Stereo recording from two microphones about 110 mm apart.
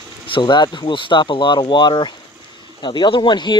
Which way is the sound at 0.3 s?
45° left (ahead or behind).